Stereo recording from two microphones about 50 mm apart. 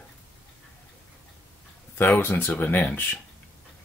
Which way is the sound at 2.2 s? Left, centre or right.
Left.